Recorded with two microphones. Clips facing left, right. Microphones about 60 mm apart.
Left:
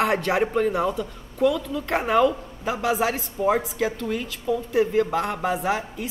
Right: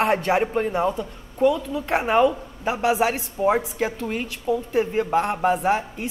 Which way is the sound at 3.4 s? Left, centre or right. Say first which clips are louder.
Right 1 dB; right.